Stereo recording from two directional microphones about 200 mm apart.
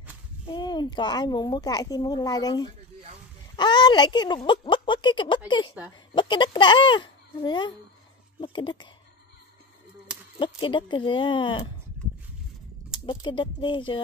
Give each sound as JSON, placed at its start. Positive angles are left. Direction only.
{"t": 0.5, "sound": "speech", "side_deg": 20}
{"t": 10.4, "sound": "speech", "side_deg": 25}
{"t": 13.0, "sound": "speech", "side_deg": 25}